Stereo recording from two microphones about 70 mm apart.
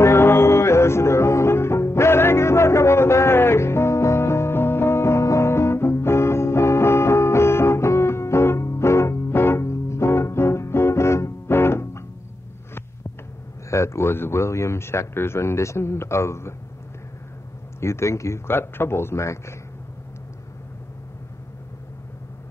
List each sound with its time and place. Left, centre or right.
0.0 s music: left
13.7 s a man's voice: left
17.7 s speech: left
18.5 s speech: left